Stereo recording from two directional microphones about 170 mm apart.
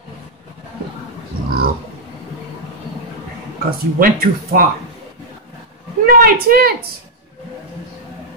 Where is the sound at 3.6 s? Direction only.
55° right (ahead or behind).